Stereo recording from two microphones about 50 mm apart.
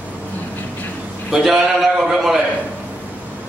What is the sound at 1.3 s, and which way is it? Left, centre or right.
A man's voice, centre.